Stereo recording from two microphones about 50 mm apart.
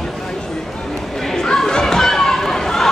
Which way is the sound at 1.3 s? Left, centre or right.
Centre.